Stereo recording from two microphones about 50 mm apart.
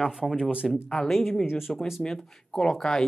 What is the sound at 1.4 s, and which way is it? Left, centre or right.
Speech, centre.